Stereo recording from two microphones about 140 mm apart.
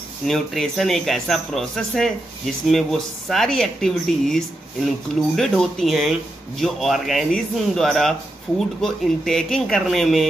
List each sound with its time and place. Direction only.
0.3 s speech: centre (ahead or behind)